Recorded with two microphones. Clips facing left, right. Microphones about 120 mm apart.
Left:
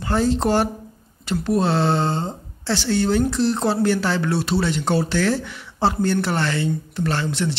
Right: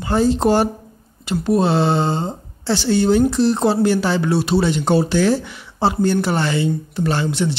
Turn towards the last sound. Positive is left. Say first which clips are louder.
# right 3 dB
turn(degrees=-10)  # may be behind; listen again after turning